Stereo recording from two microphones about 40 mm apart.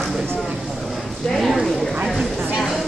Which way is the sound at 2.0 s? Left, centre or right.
Centre.